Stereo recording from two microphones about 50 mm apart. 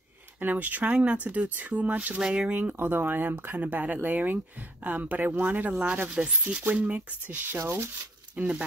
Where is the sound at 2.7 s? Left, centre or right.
Right.